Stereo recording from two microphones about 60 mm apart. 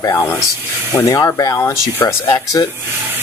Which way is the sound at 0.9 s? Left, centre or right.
Left.